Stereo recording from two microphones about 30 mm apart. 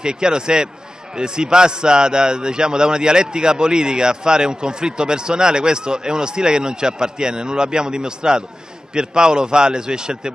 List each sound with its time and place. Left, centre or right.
0.0 s a man's voice: right